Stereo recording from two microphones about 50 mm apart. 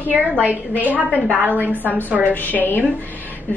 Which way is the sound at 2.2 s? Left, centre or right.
Left.